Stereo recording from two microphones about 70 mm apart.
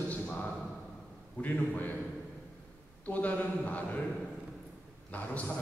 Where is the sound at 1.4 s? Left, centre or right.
Left.